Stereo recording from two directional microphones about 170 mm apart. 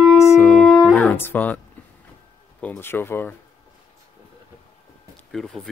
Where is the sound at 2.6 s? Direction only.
10° left (ahead or behind).